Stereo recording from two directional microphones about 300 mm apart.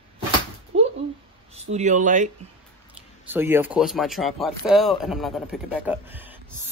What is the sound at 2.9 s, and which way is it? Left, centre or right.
A man's voice, centre.